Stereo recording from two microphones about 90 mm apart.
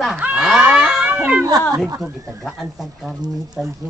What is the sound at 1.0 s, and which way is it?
Cat, 15° right (ahead or behind).